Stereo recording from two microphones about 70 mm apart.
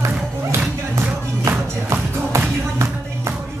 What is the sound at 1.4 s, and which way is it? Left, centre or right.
Music, right.